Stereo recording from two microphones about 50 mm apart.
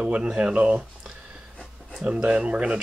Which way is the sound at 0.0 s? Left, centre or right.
Centre.